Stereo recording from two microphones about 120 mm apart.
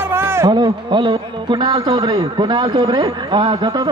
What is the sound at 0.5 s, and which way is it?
A man's voice, 40° right (ahead or behind).